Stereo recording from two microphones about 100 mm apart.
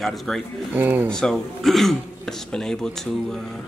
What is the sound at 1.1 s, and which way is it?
Speech, 5° left (ahead or behind).